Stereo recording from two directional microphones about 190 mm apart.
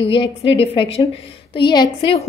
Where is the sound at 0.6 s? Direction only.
30° left (ahead or behind).